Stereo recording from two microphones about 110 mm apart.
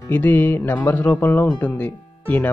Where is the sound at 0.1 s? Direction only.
15° left (ahead or behind).